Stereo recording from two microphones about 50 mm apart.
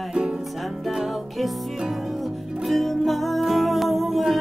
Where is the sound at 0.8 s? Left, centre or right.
Centre.